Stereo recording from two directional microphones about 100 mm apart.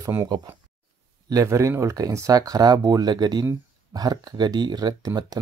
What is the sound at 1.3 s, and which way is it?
Speech, 30° right (ahead or behind).